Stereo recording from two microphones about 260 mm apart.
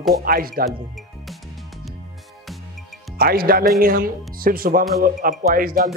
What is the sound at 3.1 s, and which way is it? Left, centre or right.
Speech, right.